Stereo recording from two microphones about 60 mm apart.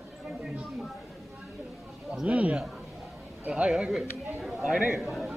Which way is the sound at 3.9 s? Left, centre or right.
Centre.